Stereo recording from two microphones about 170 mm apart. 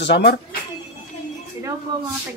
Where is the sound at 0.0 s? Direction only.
80° left.